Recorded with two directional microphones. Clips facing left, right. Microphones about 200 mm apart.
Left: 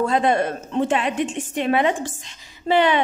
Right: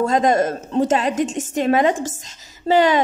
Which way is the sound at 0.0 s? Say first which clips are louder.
Right 2 dB; 40° right (ahead or behind).